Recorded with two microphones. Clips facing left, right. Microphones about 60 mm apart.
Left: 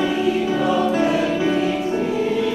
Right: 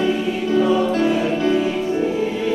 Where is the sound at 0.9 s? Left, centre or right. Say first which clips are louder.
Even; centre.